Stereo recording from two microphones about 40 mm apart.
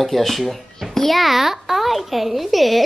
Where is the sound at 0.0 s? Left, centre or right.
Centre.